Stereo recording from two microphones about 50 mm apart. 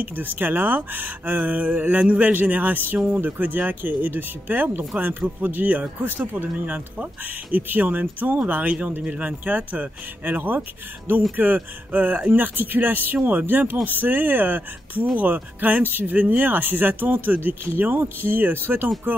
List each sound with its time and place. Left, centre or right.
0.0 s speech: right